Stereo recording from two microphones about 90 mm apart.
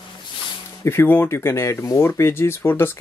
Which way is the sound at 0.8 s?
25° left (ahead or behind).